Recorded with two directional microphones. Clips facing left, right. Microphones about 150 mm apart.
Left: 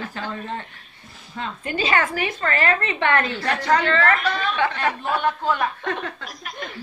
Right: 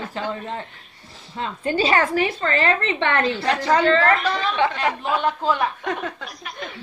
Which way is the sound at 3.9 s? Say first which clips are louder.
Right 3 dB; 30° right (ahead or behind).